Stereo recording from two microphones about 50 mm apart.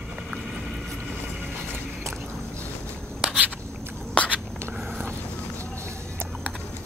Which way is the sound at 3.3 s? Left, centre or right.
Right.